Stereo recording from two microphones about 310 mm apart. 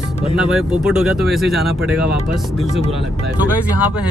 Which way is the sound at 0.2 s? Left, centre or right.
Centre.